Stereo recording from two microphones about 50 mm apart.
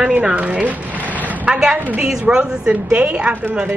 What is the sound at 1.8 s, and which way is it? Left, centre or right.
Speech, right.